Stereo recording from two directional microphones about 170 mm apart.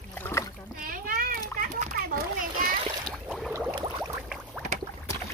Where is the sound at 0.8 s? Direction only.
60° right (ahead or behind).